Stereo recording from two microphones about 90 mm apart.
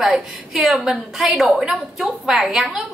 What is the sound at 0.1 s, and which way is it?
A woman's voice, 5° right (ahead or behind).